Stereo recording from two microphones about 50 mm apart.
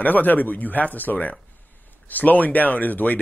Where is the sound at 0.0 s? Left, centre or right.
Left.